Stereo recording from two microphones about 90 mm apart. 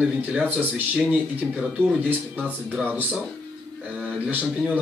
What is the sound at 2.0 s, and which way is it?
Speech, 20° right (ahead or behind).